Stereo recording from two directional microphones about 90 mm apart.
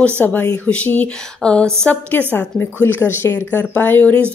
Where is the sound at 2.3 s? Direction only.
25° left (ahead or behind).